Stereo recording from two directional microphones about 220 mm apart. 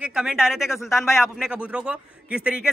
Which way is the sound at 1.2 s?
5° right (ahead or behind).